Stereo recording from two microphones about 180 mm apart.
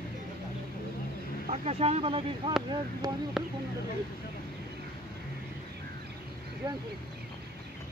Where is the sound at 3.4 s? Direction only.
Centre (ahead or behind).